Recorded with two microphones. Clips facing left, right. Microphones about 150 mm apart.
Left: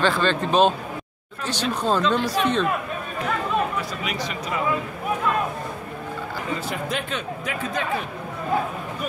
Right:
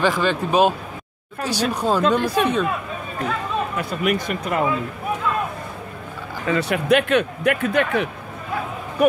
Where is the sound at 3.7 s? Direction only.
55° right (ahead or behind).